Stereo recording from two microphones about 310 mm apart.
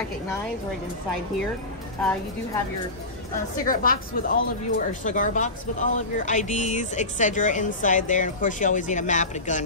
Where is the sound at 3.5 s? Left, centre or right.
Left.